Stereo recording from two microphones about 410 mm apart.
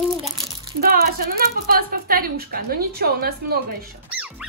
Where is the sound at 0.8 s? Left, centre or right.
Right.